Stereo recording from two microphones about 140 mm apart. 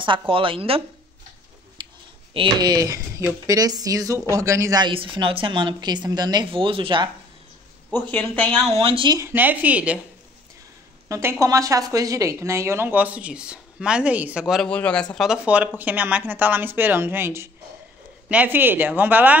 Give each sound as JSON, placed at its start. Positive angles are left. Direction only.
{"t": 0.0, "sound": "a woman's voice", "side_deg": -40}
{"t": 2.3, "sound": "speech", "side_deg": -30}
{"t": 7.9, "sound": "speech", "side_deg": 15}
{"t": 8.7, "sound": "a woman's voice", "side_deg": -40}
{"t": 9.2, "sound": "a woman's voice", "side_deg": -15}
{"t": 11.1, "sound": "a woman's voice", "side_deg": -20}
{"t": 14.7, "sound": "speech", "side_deg": 10}
{"t": 15.4, "sound": "a woman's voice", "side_deg": -10}